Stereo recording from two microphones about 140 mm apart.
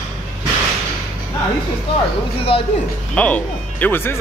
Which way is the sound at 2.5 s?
40° left (ahead or behind).